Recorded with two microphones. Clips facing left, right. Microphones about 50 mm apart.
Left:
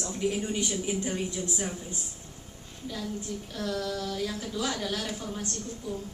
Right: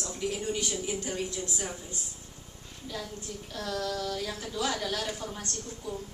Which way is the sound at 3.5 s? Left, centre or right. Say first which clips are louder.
Even; centre.